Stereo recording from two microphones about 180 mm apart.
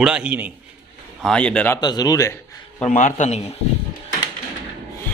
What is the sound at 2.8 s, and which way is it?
Speech, 45° left (ahead or behind).